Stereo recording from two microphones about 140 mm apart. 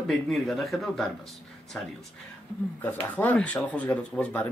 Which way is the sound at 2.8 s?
10° left (ahead or behind).